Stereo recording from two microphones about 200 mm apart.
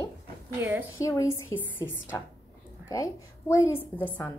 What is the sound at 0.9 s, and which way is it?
Speech, 15° left (ahead or behind).